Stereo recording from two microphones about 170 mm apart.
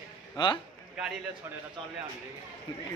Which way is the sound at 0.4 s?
25° left (ahead or behind).